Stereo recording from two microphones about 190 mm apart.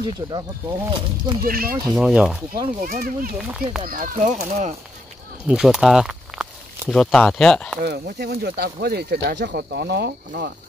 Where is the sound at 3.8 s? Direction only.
45° right (ahead or behind).